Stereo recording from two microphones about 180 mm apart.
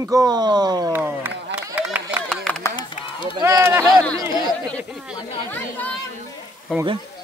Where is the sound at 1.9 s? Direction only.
10° right (ahead or behind).